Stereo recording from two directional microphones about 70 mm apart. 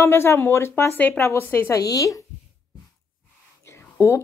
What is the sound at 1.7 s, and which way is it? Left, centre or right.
Speech, left.